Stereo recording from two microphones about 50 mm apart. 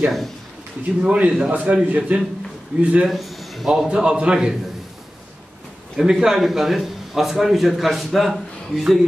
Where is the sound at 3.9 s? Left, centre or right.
Right.